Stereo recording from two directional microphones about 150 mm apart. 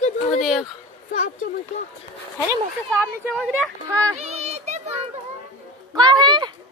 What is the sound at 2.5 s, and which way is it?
Speech, 20° right (ahead or behind).